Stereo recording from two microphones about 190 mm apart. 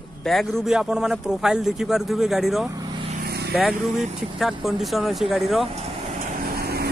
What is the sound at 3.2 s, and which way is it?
Vehicle, 55° right (ahead or behind).